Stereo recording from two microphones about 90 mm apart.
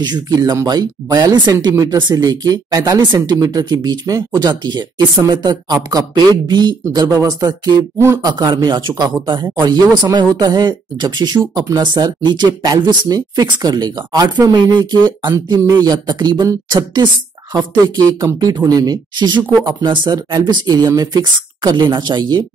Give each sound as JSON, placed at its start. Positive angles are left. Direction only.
{"t": 0.0, "sound": "speech", "side_deg": -50}